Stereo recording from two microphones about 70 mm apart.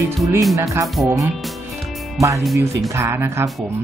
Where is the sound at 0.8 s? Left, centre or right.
Centre.